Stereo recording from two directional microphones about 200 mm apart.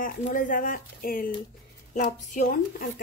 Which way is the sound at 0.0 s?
45° left (ahead or behind).